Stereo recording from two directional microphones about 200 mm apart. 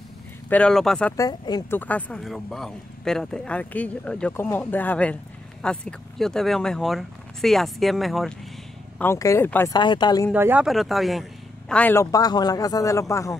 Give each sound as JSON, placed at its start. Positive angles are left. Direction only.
{"t": 0.5, "sound": "speech", "side_deg": 5}
{"t": 1.1, "sound": "speech", "side_deg": 20}
{"t": 1.8, "sound": "speech", "side_deg": 5}
{"t": 8.9, "sound": "speech", "side_deg": 10}
{"t": 9.8, "sound": "speech", "side_deg": 20}
{"t": 10.3, "sound": "speech", "side_deg": -10}